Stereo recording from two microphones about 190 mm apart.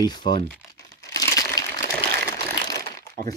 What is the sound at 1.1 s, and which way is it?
Crumpling, 15° left (ahead or behind).